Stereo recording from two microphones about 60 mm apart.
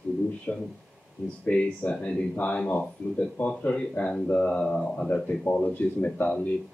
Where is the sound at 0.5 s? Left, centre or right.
Left.